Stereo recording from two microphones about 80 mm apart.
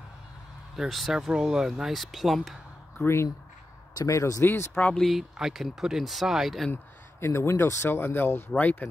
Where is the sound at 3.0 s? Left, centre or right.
Left.